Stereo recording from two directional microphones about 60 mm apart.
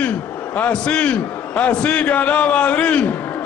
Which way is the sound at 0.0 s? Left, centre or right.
Left.